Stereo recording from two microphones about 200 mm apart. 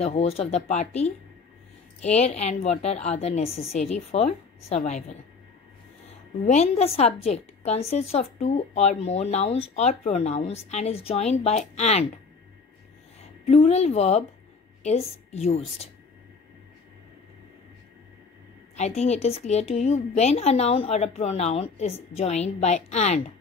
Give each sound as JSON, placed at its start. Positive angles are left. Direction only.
{"t": 0.0, "sound": "a woman's voice", "side_deg": 30}
{"t": 6.4, "sound": "a woman's voice", "side_deg": 35}
{"t": 13.5, "sound": "a woman's voice", "side_deg": 30}
{"t": 18.8, "sound": "a woman's voice", "side_deg": 35}